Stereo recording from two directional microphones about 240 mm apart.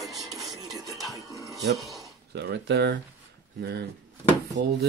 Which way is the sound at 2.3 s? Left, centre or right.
Right.